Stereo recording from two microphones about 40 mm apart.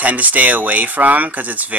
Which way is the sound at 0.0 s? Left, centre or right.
Right.